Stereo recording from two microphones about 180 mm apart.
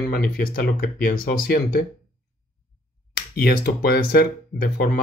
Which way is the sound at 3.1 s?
60° left (ahead or behind).